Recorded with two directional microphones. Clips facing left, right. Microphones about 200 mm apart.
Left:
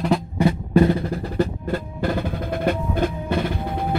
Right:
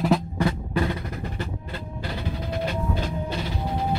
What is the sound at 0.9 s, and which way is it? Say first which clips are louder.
Music: left 8 dB; 50° left (ahead or behind).